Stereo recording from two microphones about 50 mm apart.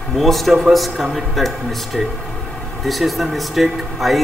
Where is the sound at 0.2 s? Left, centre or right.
Centre.